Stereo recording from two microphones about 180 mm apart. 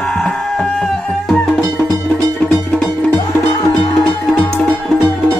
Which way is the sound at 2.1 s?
5° left (ahead or behind).